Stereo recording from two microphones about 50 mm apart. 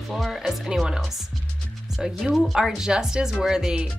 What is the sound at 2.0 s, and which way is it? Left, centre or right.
Speech, centre.